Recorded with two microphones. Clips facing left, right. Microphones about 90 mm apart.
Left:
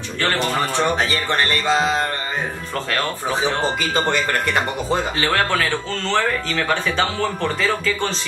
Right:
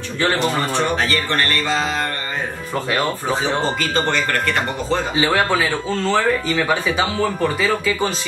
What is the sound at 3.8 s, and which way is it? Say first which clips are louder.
Speech: even; 15° left (ahead or behind).